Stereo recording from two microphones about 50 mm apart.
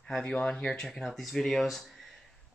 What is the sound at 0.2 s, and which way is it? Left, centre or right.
Speech, centre.